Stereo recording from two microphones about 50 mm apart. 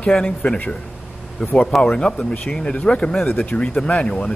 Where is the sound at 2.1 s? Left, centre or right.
Left.